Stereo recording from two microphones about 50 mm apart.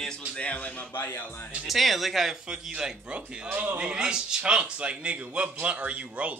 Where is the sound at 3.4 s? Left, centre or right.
Right.